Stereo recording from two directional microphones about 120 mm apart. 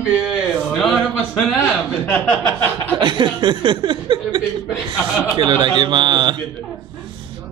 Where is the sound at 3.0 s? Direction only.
40° right (ahead or behind).